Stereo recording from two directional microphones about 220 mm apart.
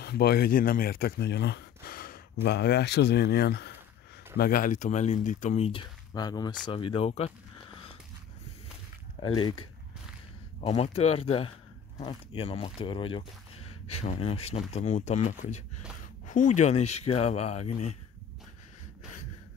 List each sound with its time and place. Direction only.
0.0 s speech: 45° left (ahead or behind); by 7.8 s 30° left (ahead or behind)
9.2 s speech: 20° left (ahead or behind)